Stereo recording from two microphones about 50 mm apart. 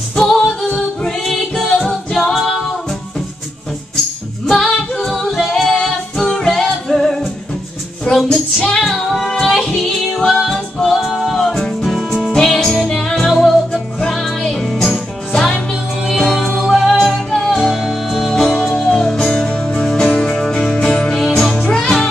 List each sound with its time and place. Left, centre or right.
0.1 s singing: centre
1.0 s music: centre
4.5 s female singing: centre
5.9 s music: centre
8.2 s music: centre
12.3 s music: centre
16.9 s music: centre
20.8 s music: centre